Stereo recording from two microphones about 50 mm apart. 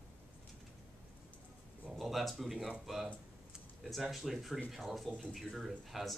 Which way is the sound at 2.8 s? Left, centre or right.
Centre.